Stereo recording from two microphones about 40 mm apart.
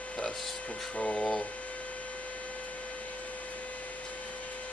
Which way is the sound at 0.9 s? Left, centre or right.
Left.